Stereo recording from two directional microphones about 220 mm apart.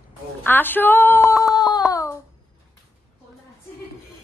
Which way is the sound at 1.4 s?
15° left (ahead or behind).